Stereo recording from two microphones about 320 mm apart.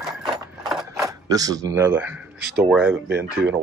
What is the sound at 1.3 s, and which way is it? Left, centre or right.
Speech, centre.